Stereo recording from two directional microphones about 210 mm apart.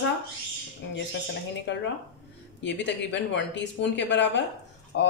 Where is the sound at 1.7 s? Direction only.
60° left (ahead or behind).